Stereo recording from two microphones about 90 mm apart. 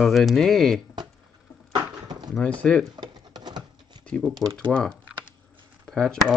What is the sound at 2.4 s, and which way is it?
Speech, 15° left (ahead or behind).